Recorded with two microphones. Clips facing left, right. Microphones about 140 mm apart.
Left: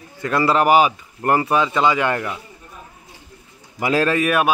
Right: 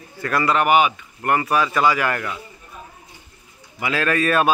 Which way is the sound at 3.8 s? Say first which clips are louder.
Left 5 dB; 40° left (ahead or behind).